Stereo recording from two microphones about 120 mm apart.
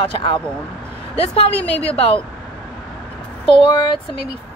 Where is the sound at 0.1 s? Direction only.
45° left (ahead or behind).